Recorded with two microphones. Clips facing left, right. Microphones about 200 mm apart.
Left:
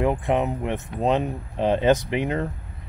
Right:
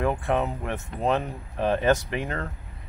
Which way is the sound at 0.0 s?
20° left (ahead or behind).